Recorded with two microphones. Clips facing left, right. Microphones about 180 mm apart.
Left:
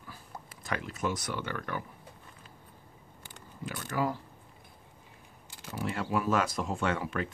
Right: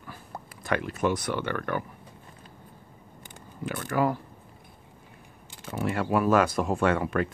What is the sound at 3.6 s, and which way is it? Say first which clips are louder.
Speech: right 6 dB; 60° right (ahead or behind).